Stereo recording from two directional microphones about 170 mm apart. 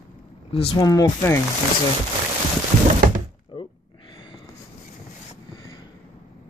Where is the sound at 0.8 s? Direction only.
20° left (ahead or behind).